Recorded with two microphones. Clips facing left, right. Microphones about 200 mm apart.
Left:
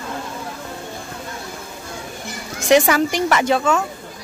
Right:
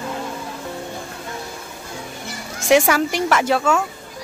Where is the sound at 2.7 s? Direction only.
5° right (ahead or behind).